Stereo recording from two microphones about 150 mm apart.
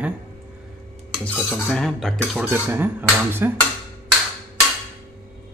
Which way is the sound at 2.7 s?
15° right (ahead or behind).